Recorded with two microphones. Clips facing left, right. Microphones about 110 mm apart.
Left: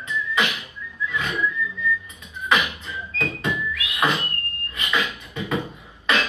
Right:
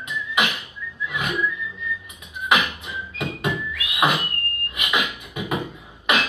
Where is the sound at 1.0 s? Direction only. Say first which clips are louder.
Left 1 dB; 20° right (ahead or behind).